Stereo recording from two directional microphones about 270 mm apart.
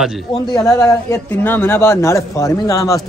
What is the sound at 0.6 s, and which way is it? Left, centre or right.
Speech, centre.